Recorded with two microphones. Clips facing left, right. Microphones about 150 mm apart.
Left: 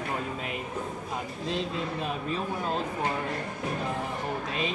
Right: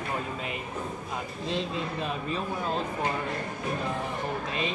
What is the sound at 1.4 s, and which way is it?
Speech, 5° left (ahead or behind).